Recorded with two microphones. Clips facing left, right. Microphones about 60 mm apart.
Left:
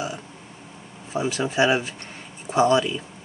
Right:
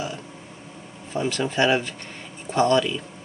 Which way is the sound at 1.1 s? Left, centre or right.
Centre.